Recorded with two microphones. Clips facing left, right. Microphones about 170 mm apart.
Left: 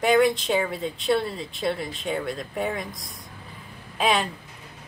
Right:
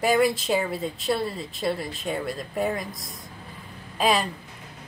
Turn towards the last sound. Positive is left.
turn(degrees=0)  # may be behind; listen again after turning